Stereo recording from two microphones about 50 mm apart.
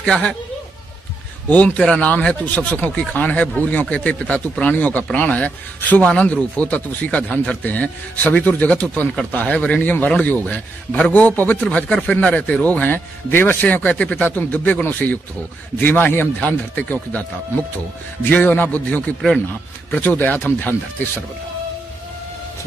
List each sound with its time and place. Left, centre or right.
0.0 s speech: centre
1.5 s speech: left
11.7 s speech: left
13.3 s a man's voice: left
13.7 s speech: left
18.3 s speech: left